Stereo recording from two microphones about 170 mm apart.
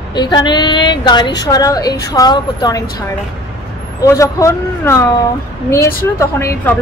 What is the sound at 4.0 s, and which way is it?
Speech, 20° left (ahead or behind).